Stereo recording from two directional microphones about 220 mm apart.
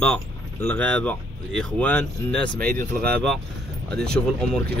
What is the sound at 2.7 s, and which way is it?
Speech, 40° right (ahead or behind).